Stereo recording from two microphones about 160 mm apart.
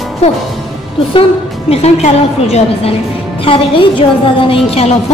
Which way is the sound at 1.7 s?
40° left (ahead or behind).